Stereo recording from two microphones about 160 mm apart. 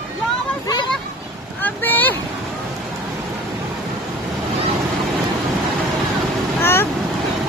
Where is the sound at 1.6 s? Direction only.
10° left (ahead or behind).